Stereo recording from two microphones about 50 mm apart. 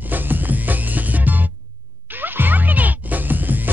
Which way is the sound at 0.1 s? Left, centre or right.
Right.